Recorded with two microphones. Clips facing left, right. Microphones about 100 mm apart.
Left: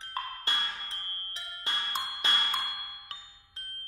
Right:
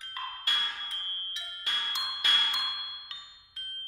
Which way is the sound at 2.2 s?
25° left (ahead or behind).